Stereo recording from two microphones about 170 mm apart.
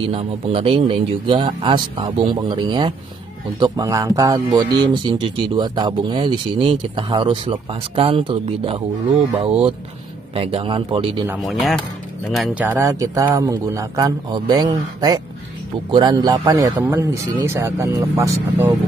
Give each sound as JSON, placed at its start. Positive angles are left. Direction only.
{"t": 0.0, "sound": "speech", "side_deg": -30}
{"t": 11.2, "sound": "speech", "side_deg": 0}